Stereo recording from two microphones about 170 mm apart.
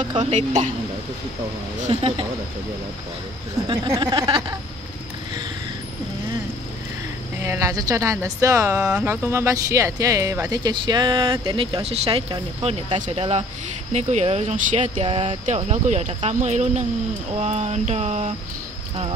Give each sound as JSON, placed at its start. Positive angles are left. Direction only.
{"t": 0.3, "sound": "speech", "side_deg": -45}
{"t": 1.8, "sound": "speech", "side_deg": -35}
{"t": 3.6, "sound": "speech", "side_deg": -25}
{"t": 7.4, "sound": "speech", "side_deg": -20}